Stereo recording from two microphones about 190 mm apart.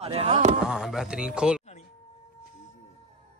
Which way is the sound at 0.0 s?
30° right (ahead or behind).